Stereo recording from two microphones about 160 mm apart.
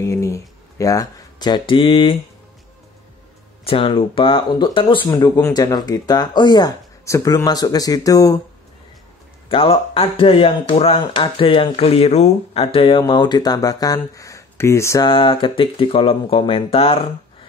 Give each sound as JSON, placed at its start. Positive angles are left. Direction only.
{"t": 0.0, "sound": "speech", "side_deg": 20}
{"t": 3.6, "sound": "speech", "side_deg": 35}
{"t": 9.5, "sound": "speech", "side_deg": 35}
{"t": 15.0, "sound": "speech", "side_deg": 30}